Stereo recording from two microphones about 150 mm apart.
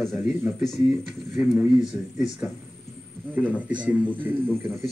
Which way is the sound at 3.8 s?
10° right (ahead or behind).